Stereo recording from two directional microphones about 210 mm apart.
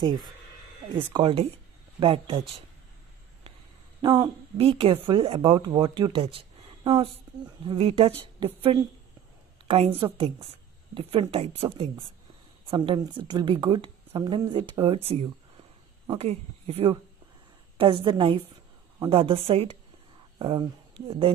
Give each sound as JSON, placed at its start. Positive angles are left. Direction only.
{"t": 1.1, "sound": "speech", "side_deg": -25}
{"t": 4.0, "sound": "speech", "side_deg": -25}